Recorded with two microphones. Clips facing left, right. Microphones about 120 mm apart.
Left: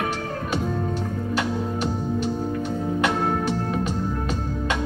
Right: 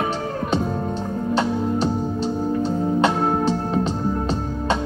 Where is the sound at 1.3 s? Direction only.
30° right (ahead or behind).